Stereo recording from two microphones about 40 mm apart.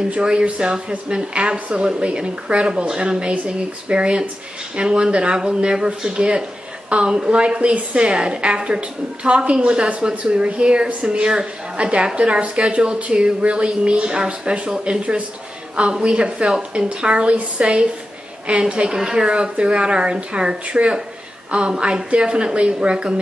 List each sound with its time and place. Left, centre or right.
0.2 s a woman's voice: right